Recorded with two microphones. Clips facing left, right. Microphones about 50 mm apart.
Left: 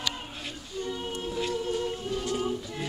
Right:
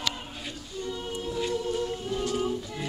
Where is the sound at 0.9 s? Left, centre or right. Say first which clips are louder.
Right 1 dB; centre.